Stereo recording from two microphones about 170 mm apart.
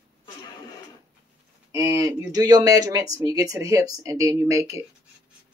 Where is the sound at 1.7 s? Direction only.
20° right (ahead or behind).